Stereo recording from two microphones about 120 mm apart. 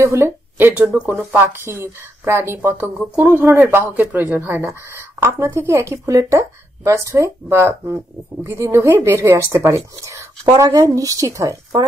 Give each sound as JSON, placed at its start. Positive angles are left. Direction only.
{"t": 0.0, "sound": "speech", "side_deg": -25}